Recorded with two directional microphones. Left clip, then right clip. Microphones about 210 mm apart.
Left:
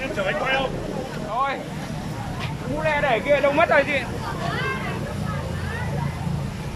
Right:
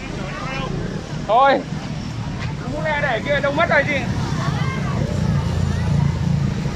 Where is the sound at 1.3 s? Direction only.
45° right (ahead or behind).